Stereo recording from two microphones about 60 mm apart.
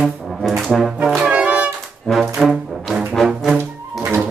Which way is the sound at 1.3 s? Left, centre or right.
Right.